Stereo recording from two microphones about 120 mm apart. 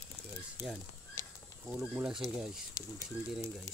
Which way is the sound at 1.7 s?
10° right (ahead or behind).